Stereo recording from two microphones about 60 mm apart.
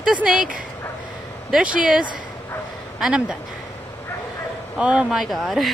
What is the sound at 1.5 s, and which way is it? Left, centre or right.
Speech, centre.